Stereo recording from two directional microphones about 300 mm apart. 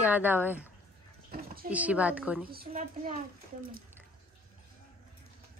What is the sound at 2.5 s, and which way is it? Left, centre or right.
Speech, right.